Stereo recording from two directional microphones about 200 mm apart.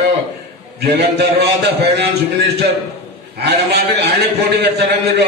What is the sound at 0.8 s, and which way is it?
A man's voice, 55° right (ahead or behind).